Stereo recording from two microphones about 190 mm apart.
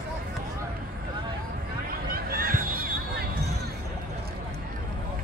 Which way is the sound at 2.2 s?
50° right (ahead or behind).